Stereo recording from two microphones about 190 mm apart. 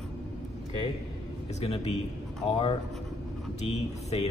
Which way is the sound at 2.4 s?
30° left (ahead or behind).